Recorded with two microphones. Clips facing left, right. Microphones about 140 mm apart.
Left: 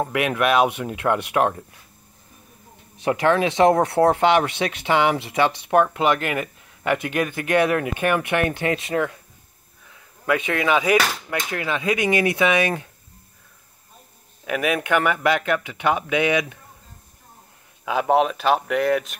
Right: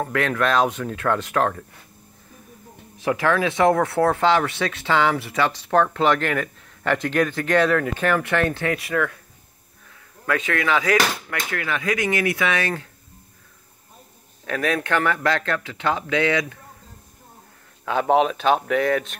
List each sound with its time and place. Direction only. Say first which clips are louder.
0.0 s speech: left 1 dB; 15° left (ahead or behind)
3.0 s speech: left 2 dB; 20° left (ahead or behind)
10.2 s speech: left 2 dB; 15° left (ahead or behind)
14.4 s speech: left 1 dB; 10° left (ahead or behind)
17.8 s speech: even; 5° left (ahead or behind)